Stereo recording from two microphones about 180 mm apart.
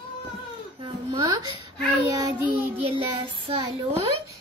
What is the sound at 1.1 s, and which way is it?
A woman's voice, 20° right (ahead or behind).